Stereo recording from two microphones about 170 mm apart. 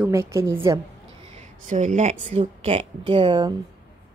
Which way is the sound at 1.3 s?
45° right (ahead or behind).